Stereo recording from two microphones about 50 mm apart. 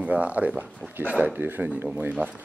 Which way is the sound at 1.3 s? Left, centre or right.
Right.